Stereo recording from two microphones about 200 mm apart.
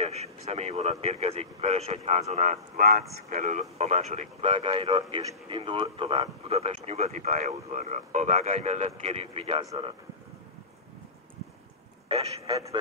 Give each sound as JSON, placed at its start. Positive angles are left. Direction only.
{"t": 0.0, "sound": "speech", "side_deg": -30}
{"t": 12.1, "sound": "a man's voice", "side_deg": -30}